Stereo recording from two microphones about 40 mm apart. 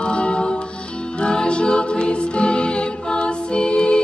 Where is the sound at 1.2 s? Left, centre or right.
Left.